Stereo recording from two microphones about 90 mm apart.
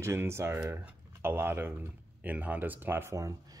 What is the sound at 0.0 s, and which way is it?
Speech, 30° right (ahead or behind).